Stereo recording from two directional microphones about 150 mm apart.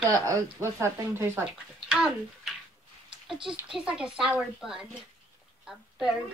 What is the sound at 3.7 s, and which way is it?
A woman's voice, 5° right (ahead or behind).